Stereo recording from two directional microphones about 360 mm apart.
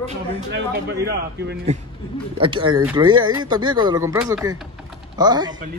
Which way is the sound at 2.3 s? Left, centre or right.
Centre.